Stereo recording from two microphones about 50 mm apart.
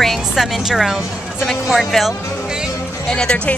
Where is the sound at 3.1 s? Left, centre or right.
Centre.